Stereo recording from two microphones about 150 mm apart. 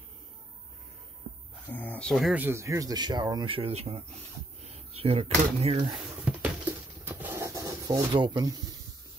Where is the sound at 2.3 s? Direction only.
15° right (ahead or behind); by 5.8 s 40° right (ahead or behind).